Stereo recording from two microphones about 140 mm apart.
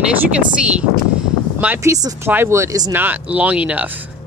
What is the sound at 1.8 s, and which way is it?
Speech, 25° right (ahead or behind).